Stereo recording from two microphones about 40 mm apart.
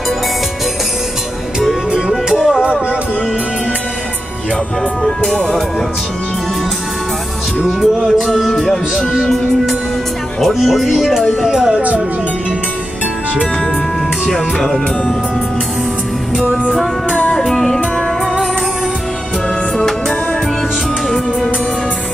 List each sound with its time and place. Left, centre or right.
1.9 s music: centre
5.0 s speech: centre
7.6 s music: centre
8.5 s speech: centre
11.4 s music: centre
14.2 s speech: centre
17.2 s music: left
17.5 s music: centre